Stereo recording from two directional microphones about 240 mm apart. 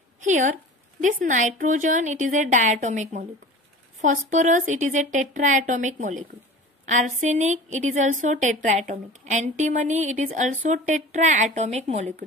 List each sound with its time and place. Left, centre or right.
0.2 s a woman's voice: right